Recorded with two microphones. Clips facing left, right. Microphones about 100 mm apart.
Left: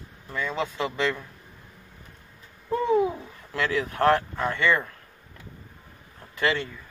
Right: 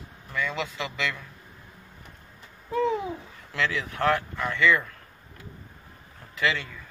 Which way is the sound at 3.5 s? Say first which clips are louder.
Left 2 dB; 40° left (ahead or behind).